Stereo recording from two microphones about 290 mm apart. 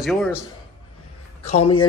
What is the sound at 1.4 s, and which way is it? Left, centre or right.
Speech, left.